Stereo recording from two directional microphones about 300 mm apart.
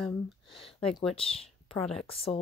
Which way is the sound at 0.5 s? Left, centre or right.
Centre.